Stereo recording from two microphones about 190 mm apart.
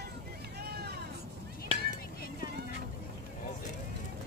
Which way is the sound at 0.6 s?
60° right (ahead or behind).